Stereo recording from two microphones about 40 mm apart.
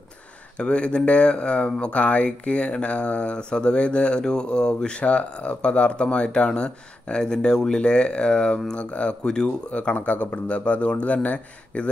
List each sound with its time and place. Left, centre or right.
0.6 s speech: left
9.7 s speech: left